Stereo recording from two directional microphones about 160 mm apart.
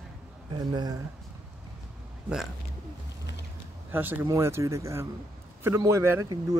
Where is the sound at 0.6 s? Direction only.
25° right (ahead or behind).